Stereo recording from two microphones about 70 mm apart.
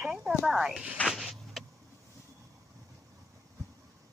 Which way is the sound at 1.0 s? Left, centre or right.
Centre.